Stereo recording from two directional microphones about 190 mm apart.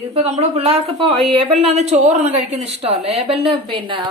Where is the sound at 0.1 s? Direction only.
30° right (ahead or behind).